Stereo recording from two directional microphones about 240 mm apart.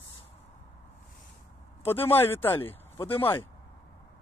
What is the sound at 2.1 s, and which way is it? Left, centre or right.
Speech, centre.